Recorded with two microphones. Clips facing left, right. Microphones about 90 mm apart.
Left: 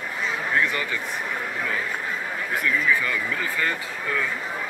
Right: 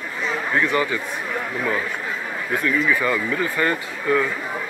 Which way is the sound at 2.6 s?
35° right (ahead or behind).